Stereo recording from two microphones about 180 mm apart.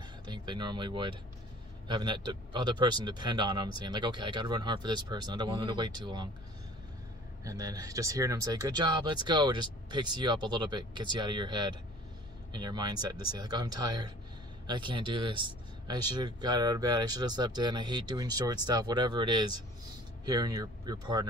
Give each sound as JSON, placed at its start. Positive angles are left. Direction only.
{"t": 0.0, "sound": "a sound", "side_deg": -25}
{"t": 1.9, "sound": "speech", "side_deg": -25}
{"t": 7.4, "sound": "speech", "side_deg": -20}